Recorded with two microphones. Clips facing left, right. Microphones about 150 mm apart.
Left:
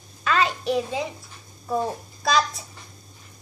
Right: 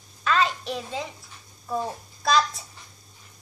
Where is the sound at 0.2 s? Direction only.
5° left (ahead or behind).